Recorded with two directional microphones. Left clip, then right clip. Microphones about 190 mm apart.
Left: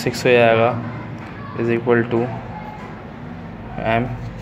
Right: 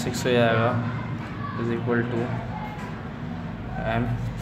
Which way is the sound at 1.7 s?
30° left (ahead or behind).